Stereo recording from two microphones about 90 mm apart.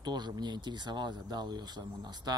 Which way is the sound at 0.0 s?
55° right (ahead or behind).